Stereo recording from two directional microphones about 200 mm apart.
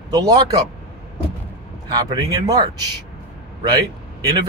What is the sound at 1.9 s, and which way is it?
Speech, 20° right (ahead or behind).